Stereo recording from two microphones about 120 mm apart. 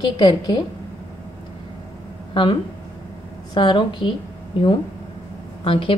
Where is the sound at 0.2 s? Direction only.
40° left (ahead or behind).